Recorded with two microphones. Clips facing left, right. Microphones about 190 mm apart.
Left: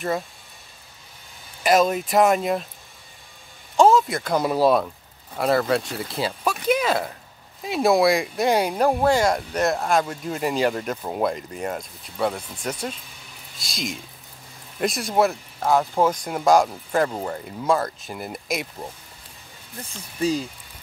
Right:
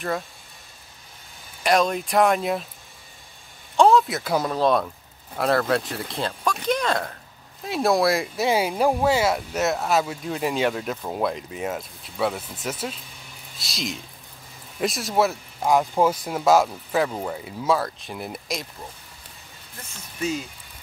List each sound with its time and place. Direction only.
1.6 s speech: 5° left (ahead or behind)
3.7 s speech: centre (ahead or behind)
4.5 s speech: 5° left (ahead or behind)
15.6 s speech: 15° right (ahead or behind)
19.8 s speech: 35° left (ahead or behind)